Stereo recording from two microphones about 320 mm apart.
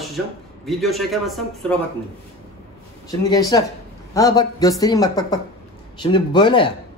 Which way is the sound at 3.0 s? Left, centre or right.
Centre.